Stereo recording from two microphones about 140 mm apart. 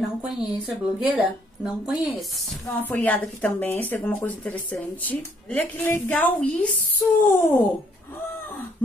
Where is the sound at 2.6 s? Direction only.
15° left (ahead or behind).